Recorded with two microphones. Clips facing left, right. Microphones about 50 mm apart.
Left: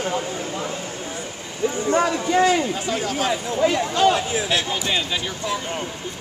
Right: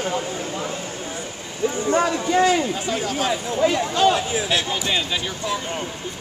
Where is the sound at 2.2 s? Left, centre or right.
Left.